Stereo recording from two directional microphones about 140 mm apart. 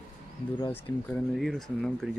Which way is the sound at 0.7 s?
15° left (ahead or behind).